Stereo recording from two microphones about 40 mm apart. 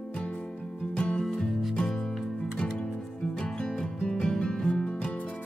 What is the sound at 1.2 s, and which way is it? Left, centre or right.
Music, centre.